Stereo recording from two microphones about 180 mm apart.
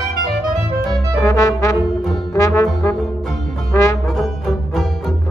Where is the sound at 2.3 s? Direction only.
20° left (ahead or behind).